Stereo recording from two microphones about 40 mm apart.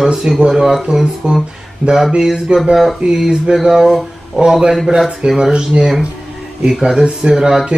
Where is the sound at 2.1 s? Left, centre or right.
Centre.